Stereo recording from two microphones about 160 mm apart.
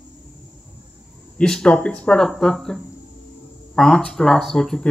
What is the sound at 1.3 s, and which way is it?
Speech, 5° left (ahead or behind).